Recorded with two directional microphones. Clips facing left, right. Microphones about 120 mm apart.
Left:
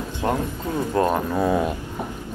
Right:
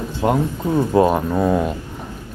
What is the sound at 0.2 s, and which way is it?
Speech, 15° right (ahead or behind).